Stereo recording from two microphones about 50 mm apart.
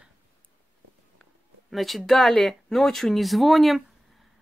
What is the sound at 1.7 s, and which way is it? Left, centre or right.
Speech, centre.